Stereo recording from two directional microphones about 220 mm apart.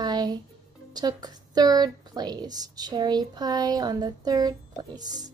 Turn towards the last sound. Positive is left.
turn(degrees=-20)  # may be behind; listen again after turning